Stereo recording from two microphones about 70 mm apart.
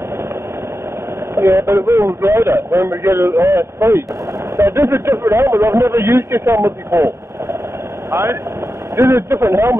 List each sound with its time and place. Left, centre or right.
1.3 s a man's voice: right
8.1 s a man's voice: right